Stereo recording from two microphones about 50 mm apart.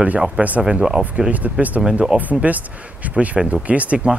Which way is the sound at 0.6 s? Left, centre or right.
Centre.